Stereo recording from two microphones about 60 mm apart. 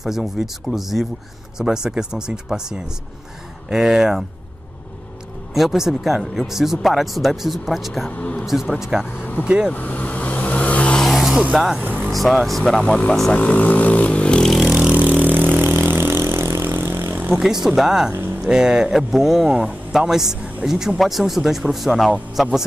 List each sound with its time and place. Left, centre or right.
0.0 s speech: centre
5.5 s speech: centre
8.2 s a man's voice: left
8.5 s speech: centre
9.7 s vehicle: left
11.1 s a sound: centre
12.1 s speech: centre
14.7 s vehicle: centre
15.0 s vehicle: right
16.6 s vehicle: right
17.4 s speech: centre